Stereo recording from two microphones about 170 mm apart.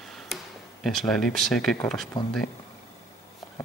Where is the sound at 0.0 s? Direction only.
Centre (ahead or behind).